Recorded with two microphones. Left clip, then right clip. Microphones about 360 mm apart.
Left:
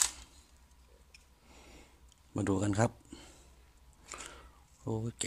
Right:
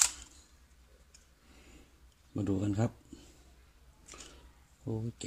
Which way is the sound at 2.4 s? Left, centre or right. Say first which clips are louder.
Left 3 dB; centre.